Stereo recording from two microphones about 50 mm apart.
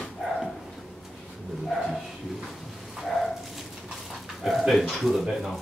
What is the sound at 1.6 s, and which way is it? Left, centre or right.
Dog, centre.